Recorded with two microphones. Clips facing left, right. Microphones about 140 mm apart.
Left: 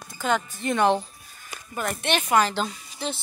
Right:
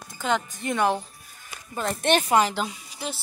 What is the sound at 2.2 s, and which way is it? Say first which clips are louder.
Speech: left 4 dB; 20° right (ahead or behind).